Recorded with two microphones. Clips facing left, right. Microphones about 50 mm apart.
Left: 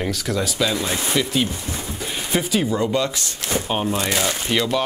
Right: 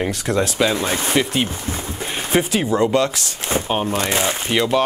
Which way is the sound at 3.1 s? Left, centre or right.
Right.